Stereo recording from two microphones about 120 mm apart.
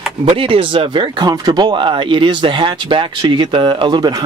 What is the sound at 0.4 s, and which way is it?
Speech, 45° right (ahead or behind).